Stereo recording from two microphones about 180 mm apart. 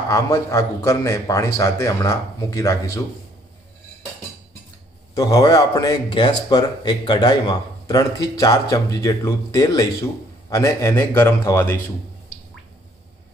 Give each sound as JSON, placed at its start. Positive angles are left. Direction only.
{"t": 0.1, "sound": "a man's voice", "side_deg": 15}
{"t": 5.1, "sound": "a man's voice", "side_deg": 20}